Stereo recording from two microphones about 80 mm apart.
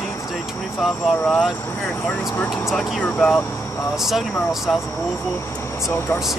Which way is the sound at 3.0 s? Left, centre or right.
Centre.